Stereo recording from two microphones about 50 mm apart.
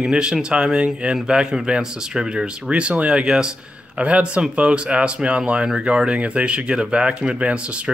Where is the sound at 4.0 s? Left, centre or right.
Right.